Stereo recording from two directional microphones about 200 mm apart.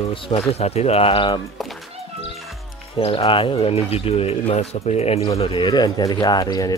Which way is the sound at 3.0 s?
30° left (ahead or behind).